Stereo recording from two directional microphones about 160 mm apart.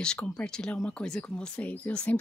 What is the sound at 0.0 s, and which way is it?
Speech, 5° left (ahead or behind).